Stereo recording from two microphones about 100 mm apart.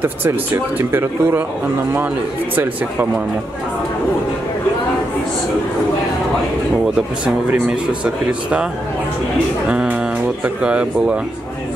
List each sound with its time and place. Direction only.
0.0 s speech: 20° right (ahead or behind)
2.5 s speech: 20° right (ahead or behind)
7.6 s speech: 10° right (ahead or behind)
9.7 s speech: 10° right (ahead or behind)